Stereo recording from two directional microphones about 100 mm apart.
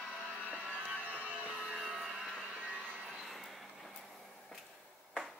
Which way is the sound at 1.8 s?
Centre (ahead or behind).